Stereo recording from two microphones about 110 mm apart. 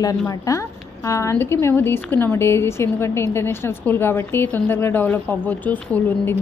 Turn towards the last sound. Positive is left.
turn(degrees=15)  # may be behind; listen again after turning